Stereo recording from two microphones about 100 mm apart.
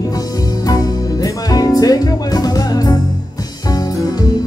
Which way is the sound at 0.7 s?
35° left (ahead or behind).